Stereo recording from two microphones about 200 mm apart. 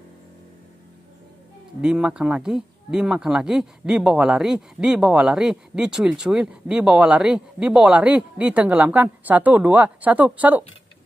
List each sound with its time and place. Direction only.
1.8 s speech: 5° right (ahead or behind)